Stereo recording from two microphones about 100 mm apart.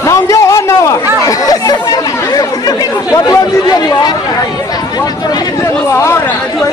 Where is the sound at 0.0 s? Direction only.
35° left (ahead or behind).